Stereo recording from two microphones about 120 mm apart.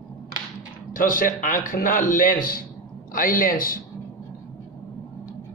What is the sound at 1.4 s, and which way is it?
Speech, 90° left.